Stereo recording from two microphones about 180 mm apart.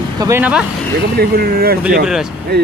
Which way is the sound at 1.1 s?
55° right (ahead or behind).